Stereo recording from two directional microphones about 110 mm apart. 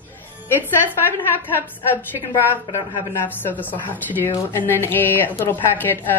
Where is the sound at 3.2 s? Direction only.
15° left (ahead or behind).